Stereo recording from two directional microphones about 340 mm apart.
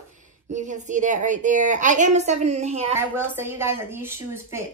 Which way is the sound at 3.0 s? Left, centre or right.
Centre.